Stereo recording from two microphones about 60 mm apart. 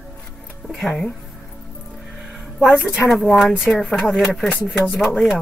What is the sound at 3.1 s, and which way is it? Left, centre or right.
Speech, centre.